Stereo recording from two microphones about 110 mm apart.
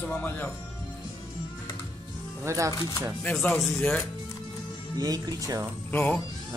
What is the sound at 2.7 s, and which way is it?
Speech, 30° left (ahead or behind).